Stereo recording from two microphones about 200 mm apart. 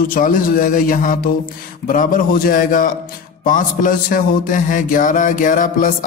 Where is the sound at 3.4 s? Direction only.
40° left (ahead or behind).